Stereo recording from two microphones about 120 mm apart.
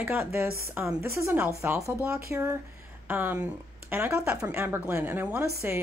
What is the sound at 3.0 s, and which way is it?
Speech, 15° right (ahead or behind).